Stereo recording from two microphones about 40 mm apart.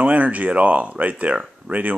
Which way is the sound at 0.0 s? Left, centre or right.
Right.